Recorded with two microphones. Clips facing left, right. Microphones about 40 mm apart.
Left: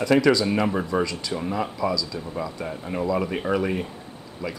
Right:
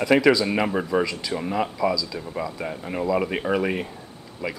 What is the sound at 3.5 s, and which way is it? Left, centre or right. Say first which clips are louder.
Speech: even; right.